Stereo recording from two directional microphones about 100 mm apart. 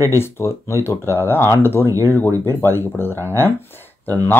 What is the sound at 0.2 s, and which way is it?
Speech, 25° left (ahead or behind).